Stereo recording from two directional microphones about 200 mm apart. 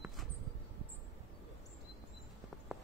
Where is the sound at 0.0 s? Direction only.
Centre (ahead or behind).